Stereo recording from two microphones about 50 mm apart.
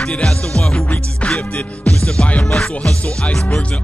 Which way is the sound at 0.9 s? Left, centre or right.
Left.